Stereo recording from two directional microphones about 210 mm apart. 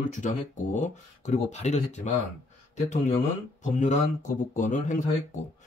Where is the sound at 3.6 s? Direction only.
35° left (ahead or behind).